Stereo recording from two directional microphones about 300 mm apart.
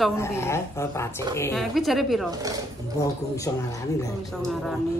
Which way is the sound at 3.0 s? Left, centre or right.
Centre.